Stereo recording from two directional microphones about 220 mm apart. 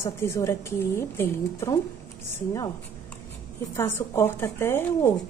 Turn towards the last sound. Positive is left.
turn(degrees=10)  # may be behind; listen again after turning